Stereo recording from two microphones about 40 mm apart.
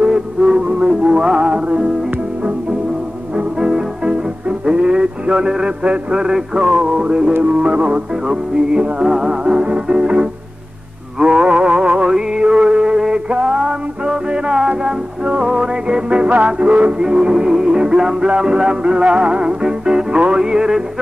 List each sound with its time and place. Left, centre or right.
0.1 s music: centre
3.3 s music: centre
9.0 s music: centre
11.1 s a sound: right
12.1 s mantra: centre
16.4 s music: right